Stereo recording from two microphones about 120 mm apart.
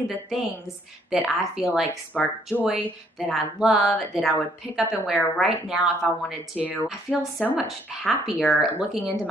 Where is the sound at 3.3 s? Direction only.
Centre (ahead or behind).